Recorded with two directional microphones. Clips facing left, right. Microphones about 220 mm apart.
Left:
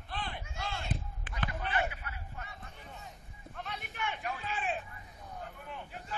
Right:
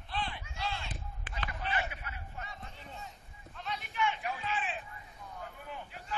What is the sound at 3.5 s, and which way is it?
Clip-clop, 55° left (ahead or behind).